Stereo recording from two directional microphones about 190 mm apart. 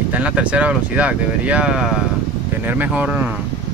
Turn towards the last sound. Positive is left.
turn(degrees=-10)  # may be behind; listen again after turning